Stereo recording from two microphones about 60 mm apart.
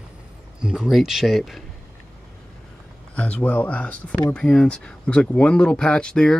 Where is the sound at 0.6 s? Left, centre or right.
Centre.